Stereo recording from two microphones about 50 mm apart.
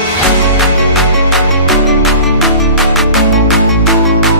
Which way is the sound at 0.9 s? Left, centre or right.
Centre.